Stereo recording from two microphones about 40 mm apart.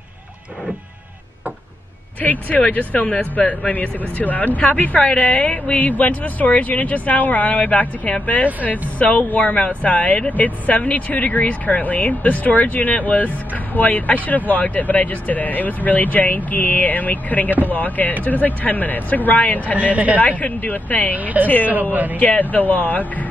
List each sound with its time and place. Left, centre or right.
2.2 s speech: left
5.0 s speech: left
19.8 s a woman's voice: right
20.2 s speech: left
21.1 s a woman's voice: right
22.2 s speech: left